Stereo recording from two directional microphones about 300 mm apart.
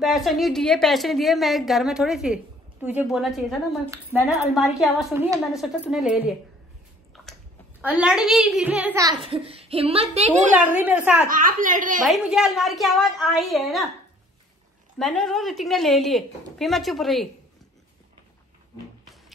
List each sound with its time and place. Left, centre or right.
0.0 s a woman's voice: centre
7.8 s a child's voice: centre
10.7 s a woman's voice: centre
11.2 s a woman's voice: right
12.1 s a woman's voice: centre
15.0 s a woman's voice: centre